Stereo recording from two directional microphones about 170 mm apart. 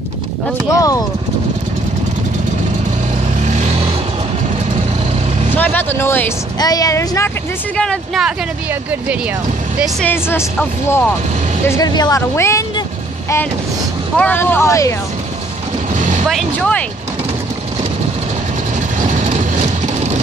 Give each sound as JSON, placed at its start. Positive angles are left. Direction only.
{"t": 0.7, "sound": "speech", "side_deg": 20}
{"t": 3.4, "sound": "vehicle", "side_deg": -45}
{"t": 5.6, "sound": "speech", "side_deg": 10}
{"t": 7.7, "sound": "speech", "side_deg": 5}
{"t": 10.0, "sound": "speech", "side_deg": 15}
{"t": 14.1, "sound": "speech", "side_deg": 10}
{"t": 16.3, "sound": "speech", "side_deg": 5}
{"t": 19.0, "sound": "vehicle", "side_deg": -45}